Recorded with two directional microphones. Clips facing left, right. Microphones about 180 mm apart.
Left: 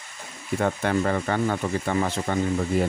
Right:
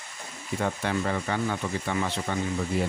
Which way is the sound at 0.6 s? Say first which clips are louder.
Left 5 dB; 50° left (ahead or behind).